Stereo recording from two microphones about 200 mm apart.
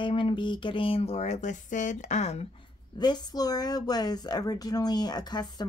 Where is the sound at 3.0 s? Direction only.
20° left (ahead or behind).